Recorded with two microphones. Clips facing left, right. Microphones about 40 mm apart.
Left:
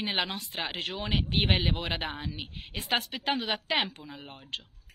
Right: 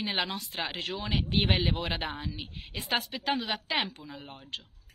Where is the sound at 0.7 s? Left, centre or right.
Left.